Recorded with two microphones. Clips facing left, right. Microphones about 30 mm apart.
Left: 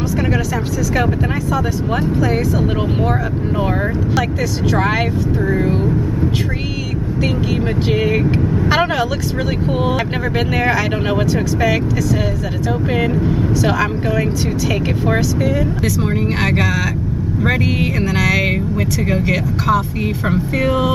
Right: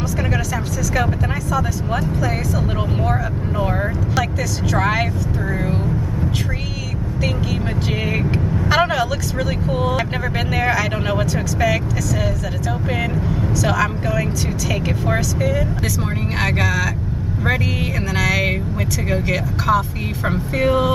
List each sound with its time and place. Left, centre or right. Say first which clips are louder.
2.1 s speech: left 5 dB; centre
8.0 s speech: left 5 dB; centre